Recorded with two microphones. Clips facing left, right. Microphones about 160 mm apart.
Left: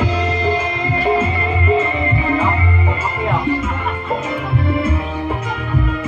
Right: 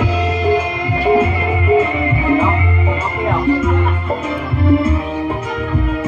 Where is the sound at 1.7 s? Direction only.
15° right (ahead or behind).